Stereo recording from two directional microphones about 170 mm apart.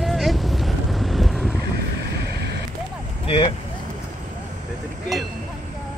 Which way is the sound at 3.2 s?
35° left (ahead or behind).